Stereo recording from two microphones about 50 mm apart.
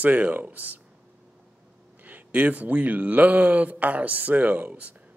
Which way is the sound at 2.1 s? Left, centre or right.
Right.